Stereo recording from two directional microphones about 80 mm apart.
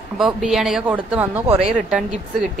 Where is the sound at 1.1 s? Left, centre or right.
Right.